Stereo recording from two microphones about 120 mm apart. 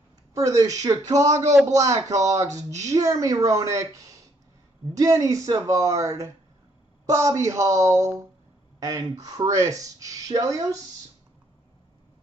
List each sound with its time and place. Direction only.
0.3 s speech: 25° right (ahead or behind)
1.2 s a man's voice: 75° right (ahead or behind)
2.0 s speech: 30° right (ahead or behind)